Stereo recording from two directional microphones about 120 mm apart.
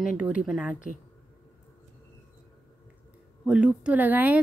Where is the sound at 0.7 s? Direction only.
90° left.